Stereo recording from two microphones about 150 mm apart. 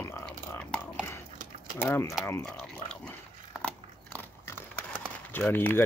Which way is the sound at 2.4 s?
5° left (ahead or behind).